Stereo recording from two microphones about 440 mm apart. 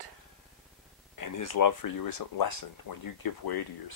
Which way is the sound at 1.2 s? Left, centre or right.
Left.